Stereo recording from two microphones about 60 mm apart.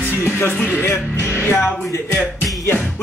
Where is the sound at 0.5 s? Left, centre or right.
Left.